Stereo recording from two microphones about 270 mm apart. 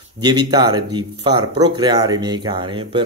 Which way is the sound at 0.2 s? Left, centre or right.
Centre.